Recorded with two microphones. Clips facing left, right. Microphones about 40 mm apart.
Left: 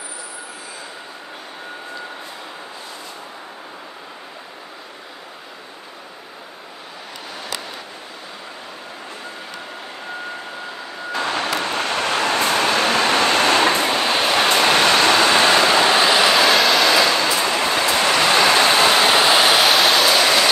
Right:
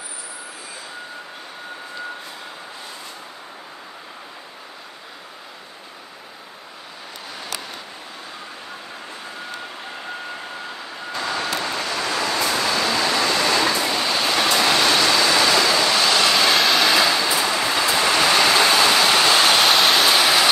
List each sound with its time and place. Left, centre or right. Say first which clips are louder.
11.1 s vehicle: left 3 dB; left; by 17.1 s centre
17.1 s vehicle: left 2 dB; left
19.1 s vehicle: left 2 dB; centre